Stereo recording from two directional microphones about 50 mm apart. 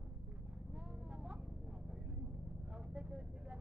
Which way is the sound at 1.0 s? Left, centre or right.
Centre.